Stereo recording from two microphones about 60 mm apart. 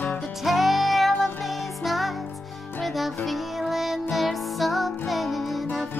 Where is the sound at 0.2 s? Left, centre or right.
Centre.